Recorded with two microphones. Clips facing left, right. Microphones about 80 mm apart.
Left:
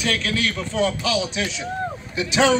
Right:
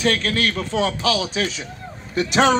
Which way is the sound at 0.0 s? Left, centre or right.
Right.